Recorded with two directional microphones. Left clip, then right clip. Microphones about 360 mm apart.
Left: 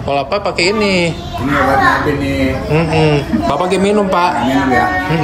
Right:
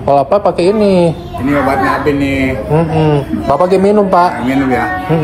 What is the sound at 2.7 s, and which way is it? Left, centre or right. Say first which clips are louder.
A man's voice: right 1 dB; centre.